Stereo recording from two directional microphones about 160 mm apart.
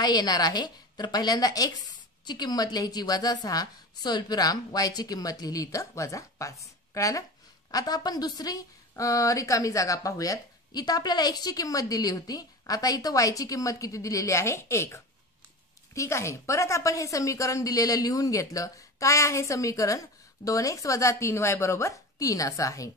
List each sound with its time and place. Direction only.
0.0 s a woman's voice: 25° left (ahead or behind)